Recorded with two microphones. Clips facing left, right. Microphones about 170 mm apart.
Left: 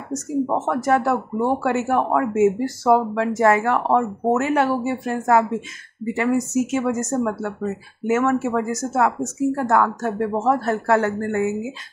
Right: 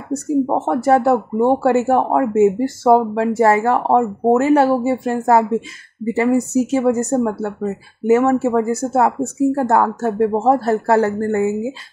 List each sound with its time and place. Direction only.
0.5 s speech: 30° right (ahead or behind)